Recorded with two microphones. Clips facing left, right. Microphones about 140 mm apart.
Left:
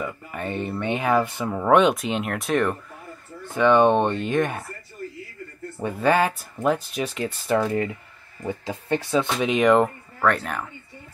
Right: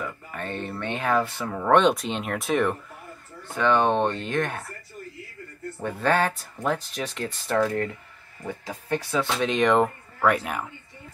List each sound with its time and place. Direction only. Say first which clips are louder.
0.0 s speech: left 3 dB; 15° left (ahead or behind)
3.5 s speech: left 4 dB; 15° left (ahead or behind)
5.8 s speech: left 3 dB; 10° left (ahead or behind)
8.5 s speech: left 3 dB; 25° left (ahead or behind)
9.4 s speech: left 2 dB; 5° left (ahead or behind)